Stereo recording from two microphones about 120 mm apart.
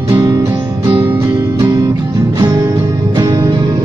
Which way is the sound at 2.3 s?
35° right (ahead or behind).